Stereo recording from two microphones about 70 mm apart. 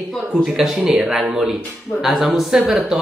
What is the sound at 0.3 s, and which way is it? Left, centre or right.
Speech, centre.